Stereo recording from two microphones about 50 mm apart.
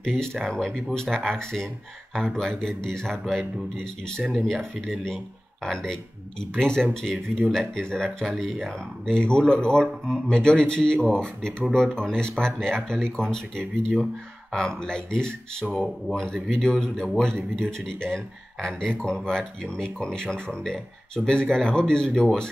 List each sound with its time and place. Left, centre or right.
0.0 s speech: centre